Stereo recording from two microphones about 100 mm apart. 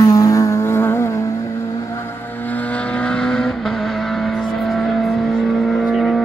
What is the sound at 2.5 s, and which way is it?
Vehicle, 15° left (ahead or behind).